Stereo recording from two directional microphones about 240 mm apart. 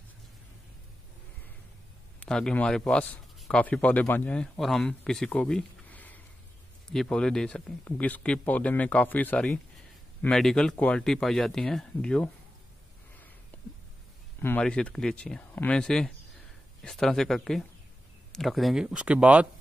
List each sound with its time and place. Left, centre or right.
2.1 s speech: centre
14.4 s speech: centre